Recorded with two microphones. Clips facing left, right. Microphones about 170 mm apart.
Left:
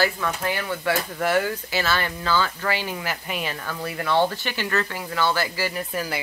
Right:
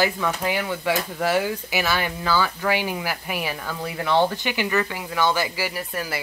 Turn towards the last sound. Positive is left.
turn(degrees=-5)  # may be behind; listen again after turning